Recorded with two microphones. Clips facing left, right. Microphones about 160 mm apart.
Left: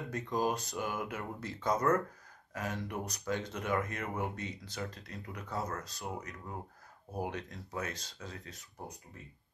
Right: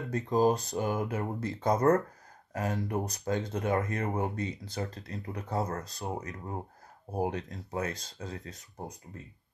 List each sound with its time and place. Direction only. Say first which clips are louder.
0.1 s speech: right 8 dB; 35° right (ahead or behind)